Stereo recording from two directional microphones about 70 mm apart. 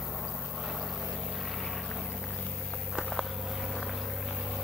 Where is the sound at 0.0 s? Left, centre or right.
Centre.